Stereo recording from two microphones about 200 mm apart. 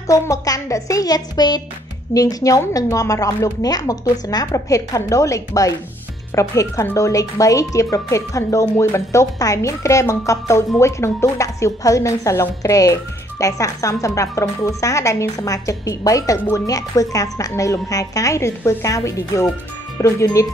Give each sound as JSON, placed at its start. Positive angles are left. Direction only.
{"t": 0.0, "sound": "a woman's voice", "side_deg": 15}